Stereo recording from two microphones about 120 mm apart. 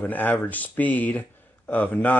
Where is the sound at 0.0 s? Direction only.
15° left (ahead or behind).